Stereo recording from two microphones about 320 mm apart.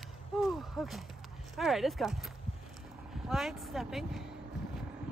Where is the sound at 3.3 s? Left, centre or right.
Centre.